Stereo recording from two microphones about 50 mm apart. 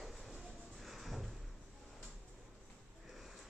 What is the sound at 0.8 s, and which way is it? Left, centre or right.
Music, centre.